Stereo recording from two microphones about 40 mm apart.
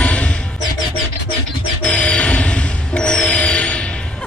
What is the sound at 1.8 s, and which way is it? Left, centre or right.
Music, left.